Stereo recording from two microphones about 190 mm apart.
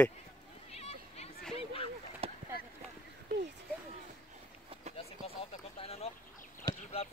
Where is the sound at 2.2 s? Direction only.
30° right (ahead or behind).